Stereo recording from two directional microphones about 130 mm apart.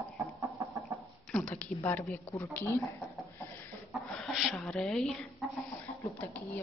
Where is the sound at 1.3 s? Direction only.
10° left (ahead or behind).